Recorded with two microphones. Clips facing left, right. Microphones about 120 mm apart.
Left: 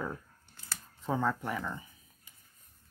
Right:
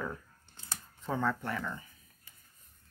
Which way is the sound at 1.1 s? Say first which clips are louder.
Left 1 dB; 10° left (ahead or behind).